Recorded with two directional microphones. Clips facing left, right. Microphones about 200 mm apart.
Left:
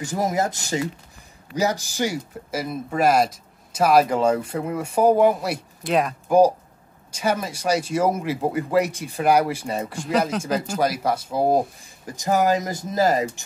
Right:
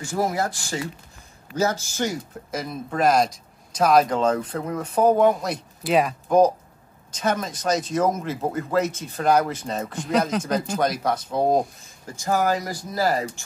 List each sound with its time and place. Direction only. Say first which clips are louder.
0.0 s speech: left 1 dB; 20° left (ahead or behind); by 6.1 s centre (ahead or behind)
6.2 s speech: left 4 dB; 10° left (ahead or behind)
12.2 s speech: left 2 dB; 20° left (ahead or behind)